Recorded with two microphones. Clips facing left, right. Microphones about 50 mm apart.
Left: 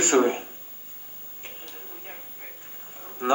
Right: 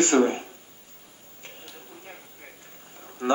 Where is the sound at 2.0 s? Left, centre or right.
Centre.